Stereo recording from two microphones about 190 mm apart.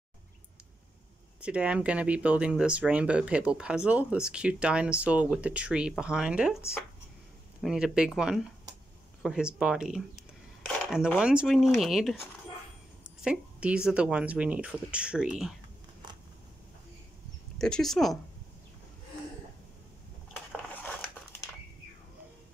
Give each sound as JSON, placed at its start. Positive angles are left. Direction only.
{"t": 1.4, "sound": "speech", "side_deg": -5}
{"t": 13.2, "sound": "speech", "side_deg": -5}
{"t": 17.6, "sound": "speech", "side_deg": 5}